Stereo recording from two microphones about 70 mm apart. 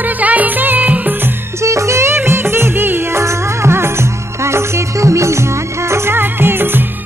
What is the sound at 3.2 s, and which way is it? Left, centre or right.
Music, right.